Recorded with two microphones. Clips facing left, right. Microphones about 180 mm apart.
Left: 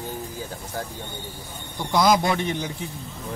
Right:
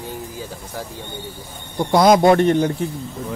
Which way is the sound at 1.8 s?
55° right (ahead or behind).